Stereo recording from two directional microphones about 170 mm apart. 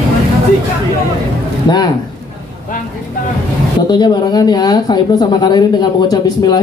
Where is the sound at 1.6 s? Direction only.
25° left (ahead or behind).